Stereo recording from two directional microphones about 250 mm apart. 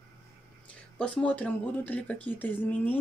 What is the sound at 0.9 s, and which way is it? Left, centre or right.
Speech, centre.